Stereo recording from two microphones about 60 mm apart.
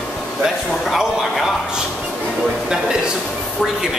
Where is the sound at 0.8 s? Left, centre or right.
Centre.